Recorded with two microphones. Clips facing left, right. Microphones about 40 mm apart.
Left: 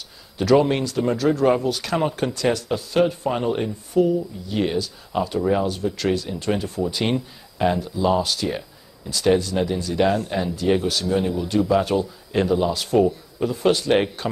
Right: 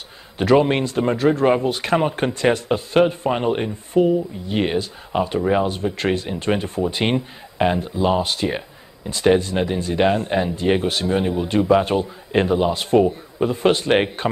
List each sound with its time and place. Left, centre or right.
0.4 s speech: right